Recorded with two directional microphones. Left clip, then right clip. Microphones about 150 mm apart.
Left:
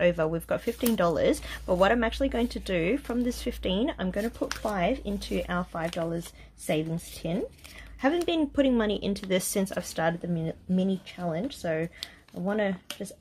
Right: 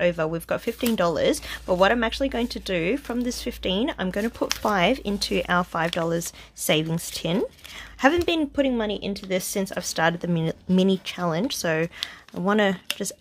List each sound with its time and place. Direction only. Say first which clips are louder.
0.0 s a woman's voice: right 2 dB; 10° right (ahead or behind); by 8.1 s 30° right (ahead or behind)
8.5 s speech: right 1 dB; 5° left (ahead or behind)
10.2 s speech: right 6 dB; 40° right (ahead or behind)